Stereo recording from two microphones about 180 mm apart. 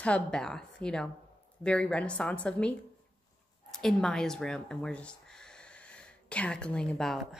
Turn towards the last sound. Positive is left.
turn(degrees=0)  # may be behind; listen again after turning